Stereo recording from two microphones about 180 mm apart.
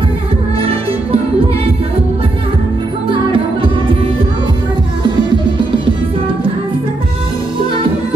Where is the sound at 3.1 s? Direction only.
30° right (ahead or behind).